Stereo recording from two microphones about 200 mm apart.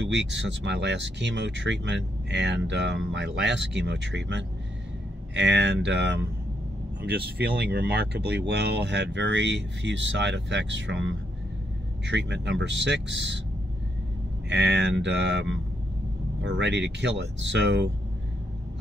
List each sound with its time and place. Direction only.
0.0 s speech: 60° right (ahead or behind)
14.5 s speech: 60° right (ahead or behind)